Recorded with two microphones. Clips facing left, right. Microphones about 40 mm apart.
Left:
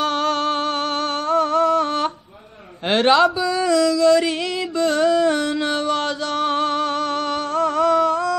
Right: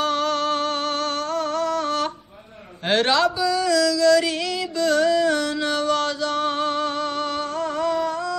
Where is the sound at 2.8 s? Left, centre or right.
Left.